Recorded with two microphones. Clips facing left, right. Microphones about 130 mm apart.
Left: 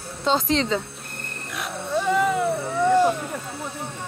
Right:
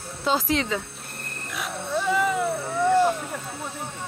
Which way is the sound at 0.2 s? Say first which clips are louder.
Left 2 dB; 30° left (ahead or behind).